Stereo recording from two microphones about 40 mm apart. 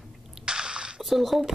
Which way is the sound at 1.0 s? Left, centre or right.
Centre.